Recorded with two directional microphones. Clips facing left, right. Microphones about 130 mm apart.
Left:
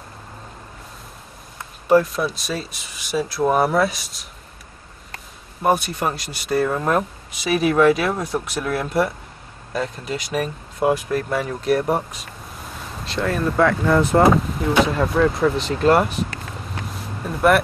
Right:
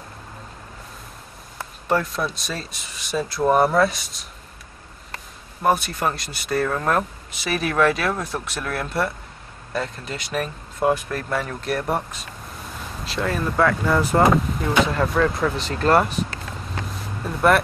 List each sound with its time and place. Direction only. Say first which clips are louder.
1.9 s speech: left 6 dB; centre (ahead or behind)
5.6 s speech: left 1 dB; 5° left (ahead or behind)
6.5 s speech: left 2 dB; 20° left (ahead or behind)
6.9 s speech: left 2 dB; 5° left (ahead or behind)
7.7 s speech: left 2 dB; 25° left (ahead or behind)
9.7 s speech: left 3 dB; centre (ahead or behind)
13.0 s speech: left 3 dB; centre (ahead or behind)
17.2 s speech: left 1 dB; centre (ahead or behind)